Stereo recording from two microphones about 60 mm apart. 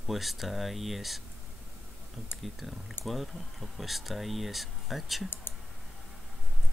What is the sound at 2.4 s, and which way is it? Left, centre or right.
Speech, centre.